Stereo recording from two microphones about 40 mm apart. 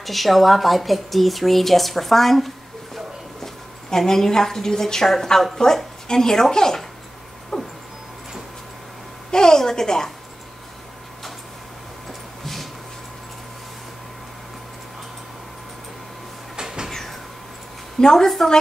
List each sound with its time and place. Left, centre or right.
0.0 s a woman's voice: centre
7.5 s a sound: left
9.3 s a woman's voice: centre
18.0 s a woman's voice: centre